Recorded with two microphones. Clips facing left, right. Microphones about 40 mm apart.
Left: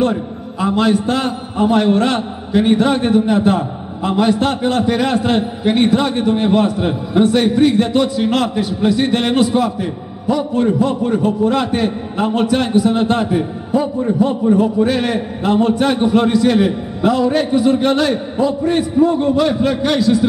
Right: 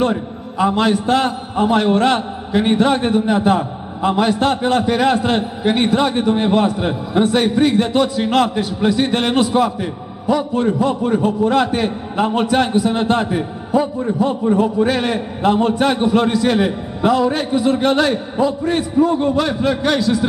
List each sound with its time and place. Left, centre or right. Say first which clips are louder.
0.0 s a man's voice: left 1 dB; centre